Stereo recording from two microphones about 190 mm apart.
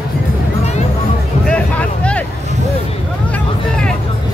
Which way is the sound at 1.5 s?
5° left (ahead or behind).